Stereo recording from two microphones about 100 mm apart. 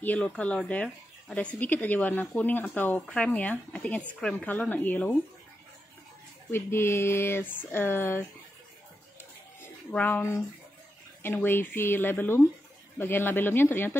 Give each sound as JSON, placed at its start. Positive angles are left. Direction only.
{"t": 0.0, "sound": "speech", "side_deg": 15}
{"t": 6.5, "sound": "speech", "side_deg": 25}
{"t": 9.6, "sound": "a sound", "side_deg": 15}
{"t": 11.2, "sound": "speech", "side_deg": 20}